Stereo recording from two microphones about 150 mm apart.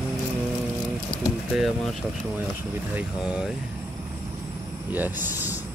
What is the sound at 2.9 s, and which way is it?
Speech, 5° right (ahead or behind).